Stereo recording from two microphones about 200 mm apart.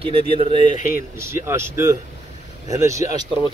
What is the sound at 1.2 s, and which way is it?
Speech, 15° right (ahead or behind).